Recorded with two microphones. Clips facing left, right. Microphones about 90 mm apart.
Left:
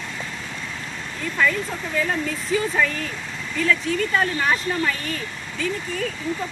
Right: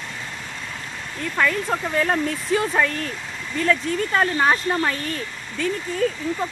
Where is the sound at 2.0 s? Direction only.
55° right (ahead or behind).